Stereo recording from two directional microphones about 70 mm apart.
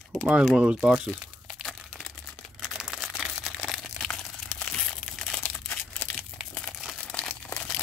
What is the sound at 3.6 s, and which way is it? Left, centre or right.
Crumpling, centre.